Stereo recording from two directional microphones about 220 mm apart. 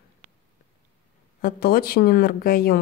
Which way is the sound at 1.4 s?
40° left (ahead or behind).